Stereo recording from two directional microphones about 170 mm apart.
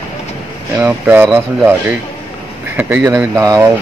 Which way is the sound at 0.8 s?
10° right (ahead or behind).